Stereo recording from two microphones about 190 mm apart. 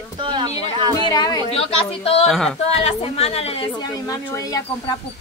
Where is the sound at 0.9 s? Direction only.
20° left (ahead or behind).